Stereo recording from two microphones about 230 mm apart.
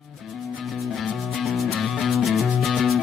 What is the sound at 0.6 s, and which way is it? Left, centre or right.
Music, centre.